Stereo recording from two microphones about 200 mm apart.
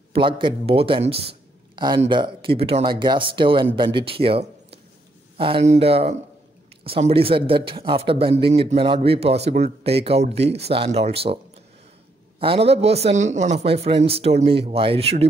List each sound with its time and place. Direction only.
0.1 s speech: 25° right (ahead or behind)
12.4 s speech: 30° right (ahead or behind)